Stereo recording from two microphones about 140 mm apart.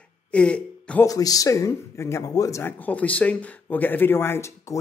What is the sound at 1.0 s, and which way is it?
Speech, 25° left (ahead or behind).